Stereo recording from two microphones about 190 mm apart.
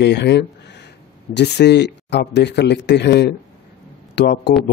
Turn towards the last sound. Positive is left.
turn(degrees=60)  # may be behind; listen again after turning